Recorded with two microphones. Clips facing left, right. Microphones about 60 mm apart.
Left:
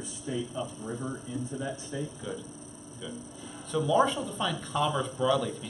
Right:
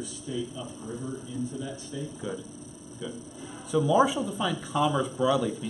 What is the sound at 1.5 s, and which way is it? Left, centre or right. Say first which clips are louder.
Speech: left 1 dB; left.